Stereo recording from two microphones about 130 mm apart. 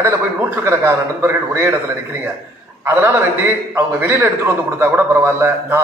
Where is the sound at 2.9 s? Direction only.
20° right (ahead or behind).